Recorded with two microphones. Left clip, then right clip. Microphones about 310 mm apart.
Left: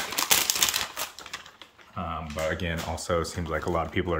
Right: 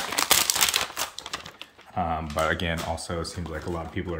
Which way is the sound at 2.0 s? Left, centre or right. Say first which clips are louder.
Right 6 dB; centre.